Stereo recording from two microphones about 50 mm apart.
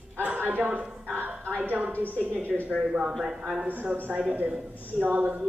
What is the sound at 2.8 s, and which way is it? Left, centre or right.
Speech, centre.